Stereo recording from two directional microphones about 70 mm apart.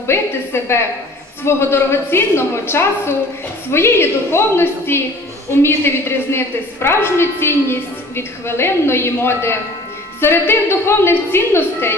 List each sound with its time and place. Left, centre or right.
0.0 s a woman's voice: left